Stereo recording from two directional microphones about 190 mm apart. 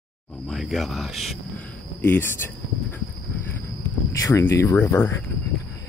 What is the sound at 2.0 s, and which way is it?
Speech, 10° left (ahead or behind).